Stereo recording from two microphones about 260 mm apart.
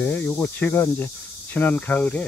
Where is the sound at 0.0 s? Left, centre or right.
Centre.